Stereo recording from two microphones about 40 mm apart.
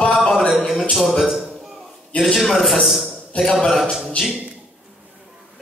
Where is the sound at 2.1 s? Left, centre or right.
Left.